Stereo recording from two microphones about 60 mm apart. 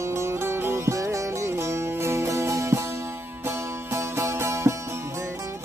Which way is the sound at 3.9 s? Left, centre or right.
Right.